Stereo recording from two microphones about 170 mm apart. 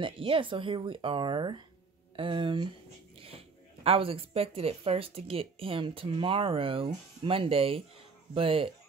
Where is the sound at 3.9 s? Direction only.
35° right (ahead or behind).